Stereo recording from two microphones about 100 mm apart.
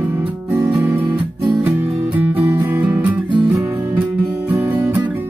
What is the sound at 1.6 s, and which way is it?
Music, 15° right (ahead or behind).